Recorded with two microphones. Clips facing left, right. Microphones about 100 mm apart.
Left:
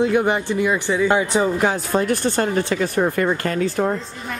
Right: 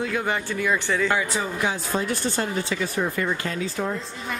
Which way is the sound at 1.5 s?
50° left (ahead or behind).